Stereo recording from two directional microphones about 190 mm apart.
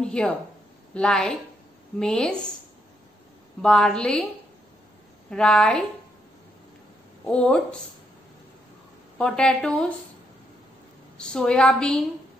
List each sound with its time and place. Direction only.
0.0 s a woman's voice: 5° left (ahead or behind)
3.6 s a woman's voice: 5° left (ahead or behind)
5.3 s a woman's voice: 5° left (ahead or behind)
7.2 s a woman's voice: 5° left (ahead or behind)
9.2 s a woman's voice: 5° left (ahead or behind)
11.1 s a woman's voice: 5° left (ahead or behind)